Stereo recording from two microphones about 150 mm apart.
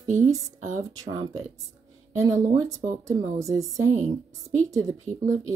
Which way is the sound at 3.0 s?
20° right (ahead or behind).